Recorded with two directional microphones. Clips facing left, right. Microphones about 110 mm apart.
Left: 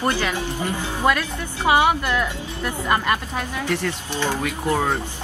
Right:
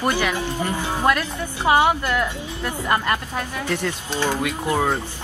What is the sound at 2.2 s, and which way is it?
Speech, 15° right (ahead or behind).